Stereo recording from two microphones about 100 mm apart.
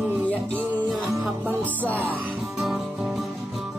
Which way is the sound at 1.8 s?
15° left (ahead or behind).